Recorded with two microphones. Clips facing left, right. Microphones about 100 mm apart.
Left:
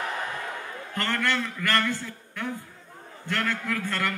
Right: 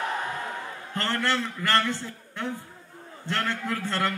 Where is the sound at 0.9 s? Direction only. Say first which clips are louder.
Even; 25° right (ahead or behind).